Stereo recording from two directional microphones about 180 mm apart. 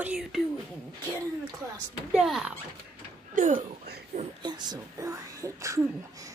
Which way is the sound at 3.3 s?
45° right (ahead or behind).